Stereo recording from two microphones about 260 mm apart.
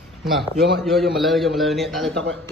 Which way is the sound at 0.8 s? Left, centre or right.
Centre.